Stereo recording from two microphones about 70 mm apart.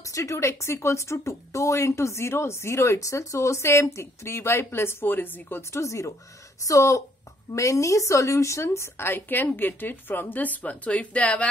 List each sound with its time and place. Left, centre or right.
0.0 s speech: left
5.6 s a woman's voice: left; by 11.4 s centre